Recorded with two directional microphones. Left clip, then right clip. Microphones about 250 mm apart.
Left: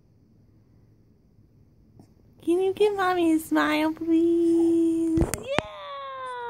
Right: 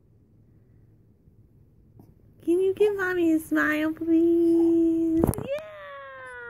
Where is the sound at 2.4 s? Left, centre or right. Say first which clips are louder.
Even; centre.